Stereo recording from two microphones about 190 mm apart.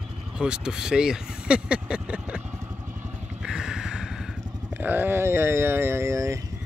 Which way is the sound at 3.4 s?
5° right (ahead or behind).